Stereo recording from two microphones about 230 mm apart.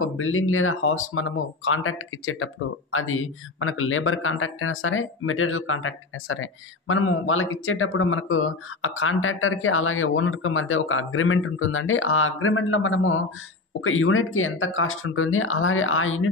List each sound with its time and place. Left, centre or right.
0.0 s speech: left